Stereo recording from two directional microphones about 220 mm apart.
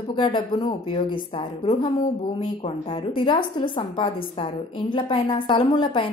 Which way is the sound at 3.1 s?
20° left (ahead or behind).